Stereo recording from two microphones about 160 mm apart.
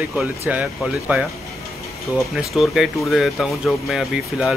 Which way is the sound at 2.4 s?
Centre (ahead or behind).